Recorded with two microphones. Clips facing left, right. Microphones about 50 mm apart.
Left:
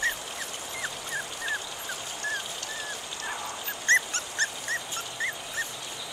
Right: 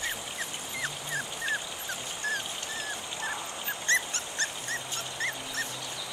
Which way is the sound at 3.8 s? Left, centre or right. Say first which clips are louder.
Left 5 dB; left.